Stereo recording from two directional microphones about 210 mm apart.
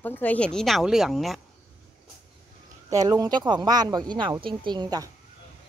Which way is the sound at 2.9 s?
15° right (ahead or behind).